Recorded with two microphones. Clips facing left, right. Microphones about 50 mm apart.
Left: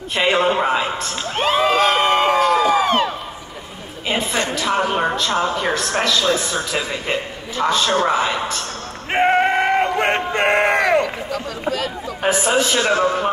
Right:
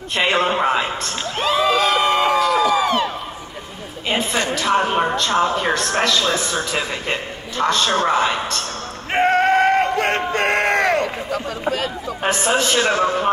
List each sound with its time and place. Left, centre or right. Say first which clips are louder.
0.1 s speech: left 1 dB; centre
1.4 s crowd: left 1 dB; left
4.1 s a woman's voice: even; centre
9.1 s crowd: even; centre
12.3 s a man's voice: left 1 dB; centre